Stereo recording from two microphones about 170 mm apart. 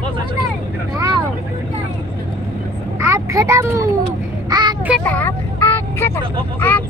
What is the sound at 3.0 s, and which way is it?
Speech, 15° right (ahead or behind).